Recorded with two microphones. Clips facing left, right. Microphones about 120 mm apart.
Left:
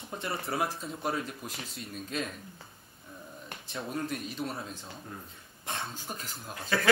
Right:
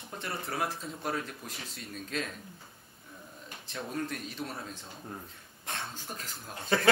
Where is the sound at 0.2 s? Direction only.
Centre (ahead or behind).